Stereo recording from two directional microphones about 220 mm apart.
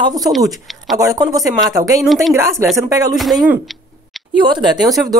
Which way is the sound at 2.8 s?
15° right (ahead or behind).